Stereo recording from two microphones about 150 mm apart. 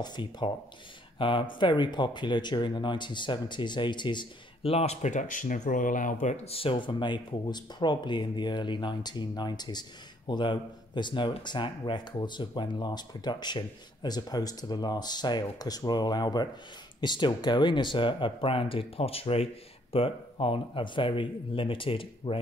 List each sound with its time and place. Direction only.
0.0 s speech: 30° left (ahead or behind)